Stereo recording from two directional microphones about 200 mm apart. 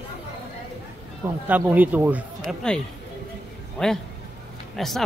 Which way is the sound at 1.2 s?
10° right (ahead or behind).